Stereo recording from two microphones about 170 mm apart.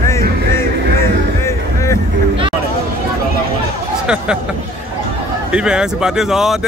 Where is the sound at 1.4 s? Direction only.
15° left (ahead or behind).